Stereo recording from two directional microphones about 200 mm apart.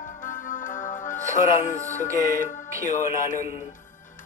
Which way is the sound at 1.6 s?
35° left (ahead or behind).